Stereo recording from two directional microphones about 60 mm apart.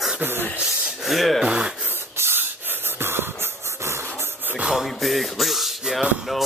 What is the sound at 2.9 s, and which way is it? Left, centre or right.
Music, right.